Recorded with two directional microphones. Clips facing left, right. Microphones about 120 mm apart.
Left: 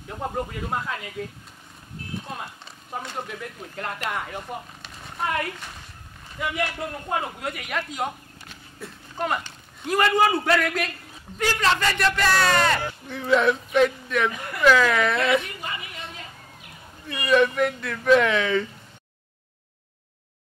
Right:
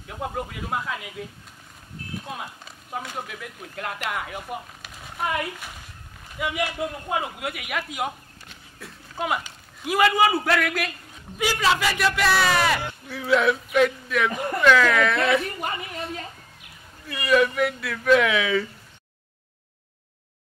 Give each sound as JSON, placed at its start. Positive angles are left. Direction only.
{"t": 0.4, "sound": "speech", "side_deg": -5}
{"t": 2.2, "sound": "a man's voice", "side_deg": -5}
{"t": 14.3, "sound": "speech", "side_deg": -40}
{"t": 14.6, "sound": "speech", "side_deg": 5}
{"t": 17.1, "sound": "speech", "side_deg": 0}